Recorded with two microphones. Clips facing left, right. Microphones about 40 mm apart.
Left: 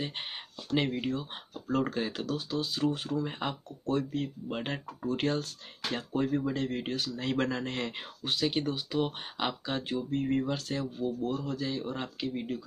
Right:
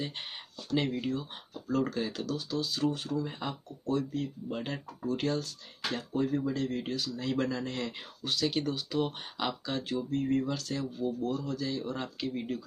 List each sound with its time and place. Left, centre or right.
0.0 s speech: left
3.3 s speech: left
7.2 s speech: left
8.2 s speech: left